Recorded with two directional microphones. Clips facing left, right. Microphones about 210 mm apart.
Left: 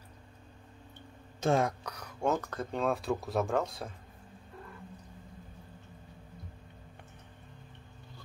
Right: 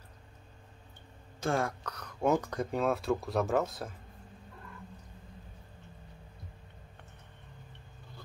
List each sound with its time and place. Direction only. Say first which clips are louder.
1.4 s speech: left 3 dB; 20° left (ahead or behind)
2.1 s speech: right 3 dB; 10° right (ahead or behind)